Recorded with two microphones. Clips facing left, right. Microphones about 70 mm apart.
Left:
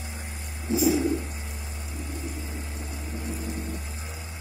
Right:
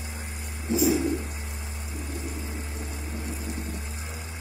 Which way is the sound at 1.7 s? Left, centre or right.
Right.